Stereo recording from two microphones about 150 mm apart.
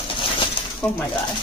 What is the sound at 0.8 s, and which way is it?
Speech, 5° left (ahead or behind).